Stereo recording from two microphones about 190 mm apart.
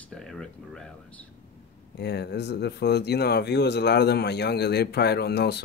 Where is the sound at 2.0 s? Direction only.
60° left (ahead or behind).